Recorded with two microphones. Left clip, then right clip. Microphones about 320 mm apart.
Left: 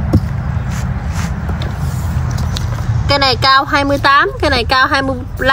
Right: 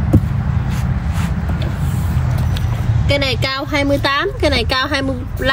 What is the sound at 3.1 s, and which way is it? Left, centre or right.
Speech, centre.